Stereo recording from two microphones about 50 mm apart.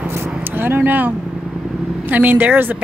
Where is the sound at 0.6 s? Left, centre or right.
Right.